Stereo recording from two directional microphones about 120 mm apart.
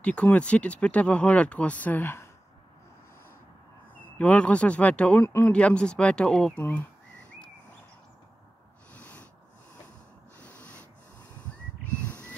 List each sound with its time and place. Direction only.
0.0 s speech: 10° left (ahead or behind)
4.2 s speech: 10° left (ahead or behind)
5.5 s speech: 10° left (ahead or behind)
6.6 s speech: 15° left (ahead or behind)
8.9 s snort: 10° left (ahead or behind)